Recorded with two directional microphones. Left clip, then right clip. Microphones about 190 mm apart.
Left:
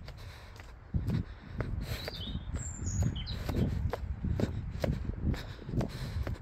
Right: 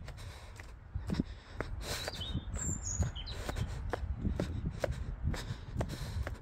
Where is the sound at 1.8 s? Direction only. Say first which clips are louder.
Right 3 dB; 25° right (ahead or behind).